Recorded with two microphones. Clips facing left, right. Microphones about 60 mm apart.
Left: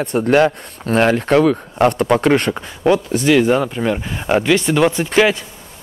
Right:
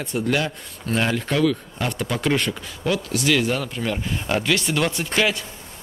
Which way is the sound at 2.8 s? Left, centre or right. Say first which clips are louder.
Left 8 dB; left.